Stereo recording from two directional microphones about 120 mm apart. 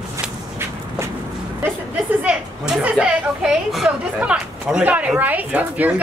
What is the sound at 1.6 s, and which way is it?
Chatter, 15° right (ahead or behind).